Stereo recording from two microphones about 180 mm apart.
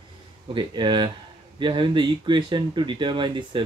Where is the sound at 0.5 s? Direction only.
25° right (ahead or behind).